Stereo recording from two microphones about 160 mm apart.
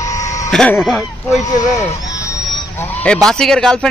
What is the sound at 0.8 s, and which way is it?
Speech, centre (ahead or behind).